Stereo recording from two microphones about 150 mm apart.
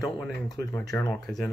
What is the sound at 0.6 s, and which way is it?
Speech, 20° left (ahead or behind).